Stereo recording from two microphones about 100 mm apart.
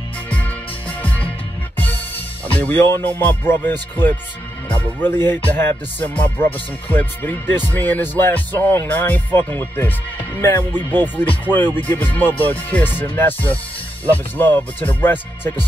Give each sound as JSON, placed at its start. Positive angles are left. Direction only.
{"t": 0.3, "sound": "music", "side_deg": 15}
{"t": 2.5, "sound": "music", "side_deg": 20}